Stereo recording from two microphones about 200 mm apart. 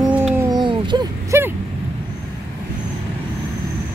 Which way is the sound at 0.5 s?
20° right (ahead or behind).